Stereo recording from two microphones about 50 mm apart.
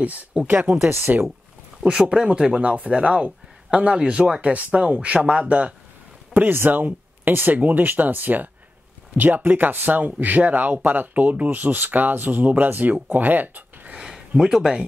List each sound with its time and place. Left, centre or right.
0.0 s speech: right
0.8 s speech: right
1.9 s speech: centre
6.3 s speech: right
13.8 s a sound: centre
14.3 s speech: centre